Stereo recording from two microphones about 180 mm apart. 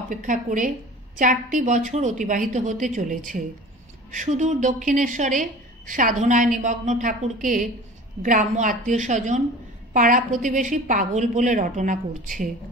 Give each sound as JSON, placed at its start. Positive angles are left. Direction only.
{"t": 0.1, "sound": "a woman's voice", "side_deg": -45}